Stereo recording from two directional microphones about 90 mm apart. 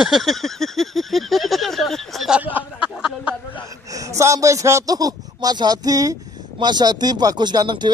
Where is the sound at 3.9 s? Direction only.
40° right (ahead or behind).